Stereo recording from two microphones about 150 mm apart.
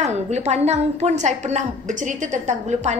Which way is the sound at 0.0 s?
50° right (ahead or behind).